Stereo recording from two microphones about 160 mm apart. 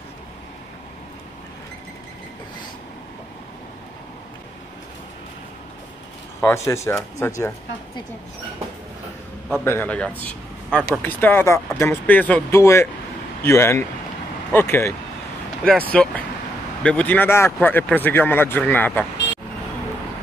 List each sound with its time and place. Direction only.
6.4 s speech: 15° left (ahead or behind)
9.7 s a man's voice: 10° left (ahead or behind)